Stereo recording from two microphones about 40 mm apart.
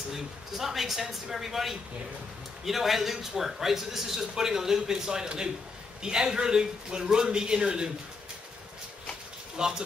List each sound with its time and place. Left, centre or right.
0.1 s a man's voice: centre
9.6 s a man's voice: centre